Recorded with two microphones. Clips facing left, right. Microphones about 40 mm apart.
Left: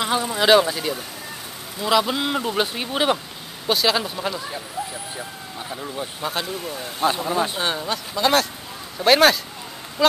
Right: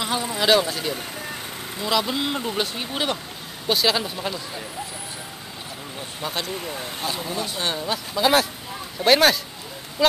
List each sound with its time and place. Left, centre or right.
0.0 s speech: centre
3.6 s speech: centre
6.2 s speech: centre
7.2 s speech: left
7.6 s speech: centre